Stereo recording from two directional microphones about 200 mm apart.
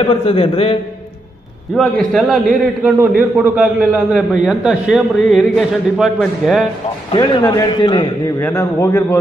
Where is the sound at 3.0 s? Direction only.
10° right (ahead or behind).